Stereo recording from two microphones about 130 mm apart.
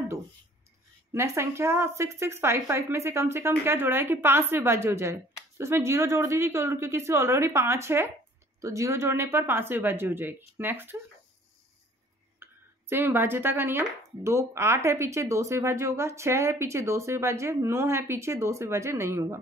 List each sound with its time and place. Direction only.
1.1 s speech: 20° right (ahead or behind)
12.4 s a sound: 20° right (ahead or behind)
12.9 s speech: 15° right (ahead or behind)